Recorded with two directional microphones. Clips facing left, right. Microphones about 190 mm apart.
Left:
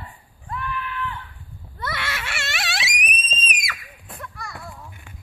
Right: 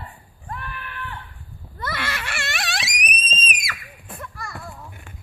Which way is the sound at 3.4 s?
Centre (ahead or behind).